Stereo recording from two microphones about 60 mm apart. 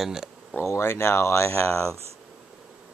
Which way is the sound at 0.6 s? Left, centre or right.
Left.